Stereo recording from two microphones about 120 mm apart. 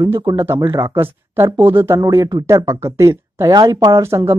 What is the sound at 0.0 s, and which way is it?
Speech, 25° right (ahead or behind).